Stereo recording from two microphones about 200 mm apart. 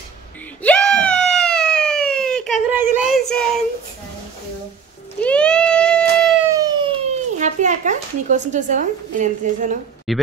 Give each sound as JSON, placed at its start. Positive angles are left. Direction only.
{"t": 0.6, "sound": "wail", "side_deg": 5}
{"t": 2.7, "sound": "child singing", "side_deg": -10}
{"t": 5.2, "sound": "a sound", "side_deg": 5}
{"t": 6.5, "sound": "siren", "side_deg": -20}
{"t": 7.3, "sound": "speech", "side_deg": -35}
{"t": 10.1, "sound": "speech", "side_deg": 0}